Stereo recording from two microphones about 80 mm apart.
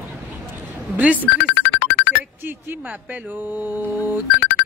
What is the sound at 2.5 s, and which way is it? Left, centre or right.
Speech, right.